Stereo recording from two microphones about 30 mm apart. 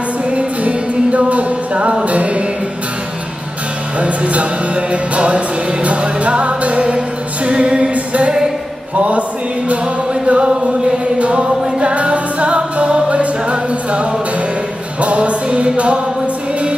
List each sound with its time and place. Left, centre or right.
0.3 s music: right
4.0 s music: right
8.9 s a sound: right
10.2 s a sound: right
11.1 s music: right
11.4 s music: right
11.9 s music: right